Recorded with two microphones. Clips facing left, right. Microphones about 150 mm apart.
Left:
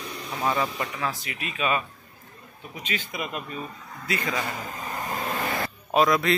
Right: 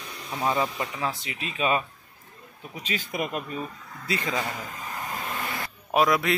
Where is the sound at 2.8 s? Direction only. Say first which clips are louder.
Right 2 dB; 45° right (ahead or behind).